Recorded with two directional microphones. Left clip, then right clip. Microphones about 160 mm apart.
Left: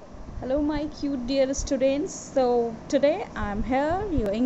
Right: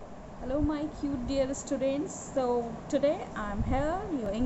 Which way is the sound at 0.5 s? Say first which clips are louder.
Left 5 dB; 50° left (ahead or behind).